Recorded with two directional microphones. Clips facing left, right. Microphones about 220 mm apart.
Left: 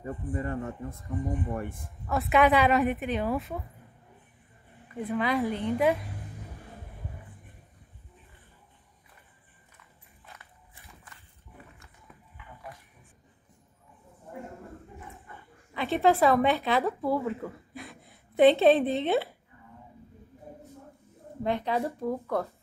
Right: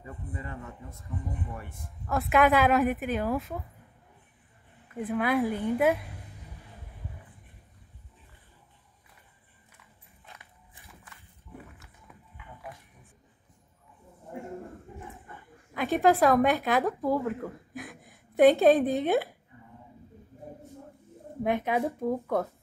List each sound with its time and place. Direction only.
0.0 s speech: 45° left (ahead or behind)
2.0 s speech: centre (ahead or behind)
4.9 s a woman's voice: 5° right (ahead or behind)
16.0 s speech: centre (ahead or behind)
18.9 s a woman's voice: 15° right (ahead or behind)
21.4 s a woman's voice: 15° right (ahead or behind)